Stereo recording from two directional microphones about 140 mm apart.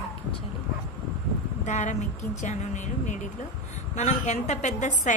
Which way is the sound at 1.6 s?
60° left (ahead or behind).